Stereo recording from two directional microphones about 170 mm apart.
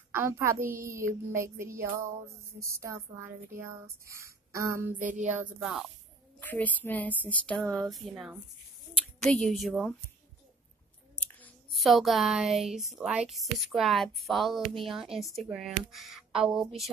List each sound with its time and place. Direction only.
0.1 s a woman's voice: 15° right (ahead or behind)
4.9 s a sound: 50° right (ahead or behind)
5.3 s speech: 5° right (ahead or behind)
6.4 s speech: 10° left (ahead or behind)
9.2 s speech: 5° left (ahead or behind)
11.1 s speech: 10° left (ahead or behind)